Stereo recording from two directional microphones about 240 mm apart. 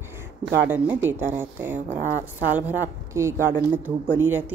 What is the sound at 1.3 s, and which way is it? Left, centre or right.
Speech, centre.